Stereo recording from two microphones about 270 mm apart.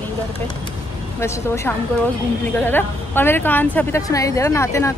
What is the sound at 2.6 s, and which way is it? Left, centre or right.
A woman's voice, centre.